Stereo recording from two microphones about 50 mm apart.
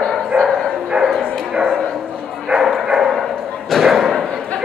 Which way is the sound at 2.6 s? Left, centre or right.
Centre.